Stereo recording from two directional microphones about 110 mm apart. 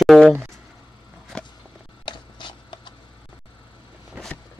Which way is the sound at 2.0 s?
45° left (ahead or behind).